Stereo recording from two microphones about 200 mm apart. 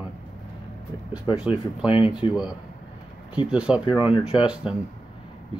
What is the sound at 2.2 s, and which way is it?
Speech, 25° left (ahead or behind).